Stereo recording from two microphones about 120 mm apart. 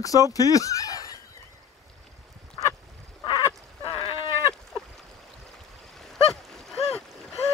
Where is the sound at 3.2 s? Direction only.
30° left (ahead or behind).